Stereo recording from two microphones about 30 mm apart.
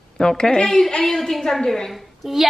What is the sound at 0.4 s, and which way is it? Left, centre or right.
A woman's voice, left.